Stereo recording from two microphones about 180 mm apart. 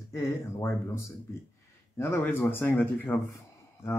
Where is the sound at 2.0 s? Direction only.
10° left (ahead or behind).